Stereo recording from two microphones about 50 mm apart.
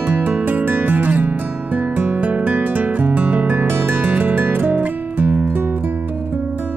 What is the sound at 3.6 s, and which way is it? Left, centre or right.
Music, right.